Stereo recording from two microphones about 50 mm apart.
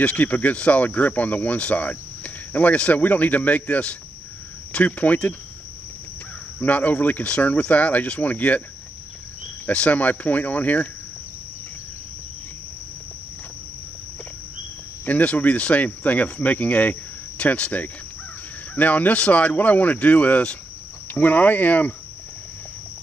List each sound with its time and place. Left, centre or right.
0.0 s speech: left
6.6 s speech: left
9.7 s speech: left
15.0 s speech: left